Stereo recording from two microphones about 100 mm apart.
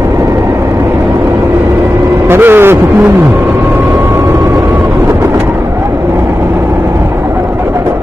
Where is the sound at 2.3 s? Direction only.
20° right (ahead or behind).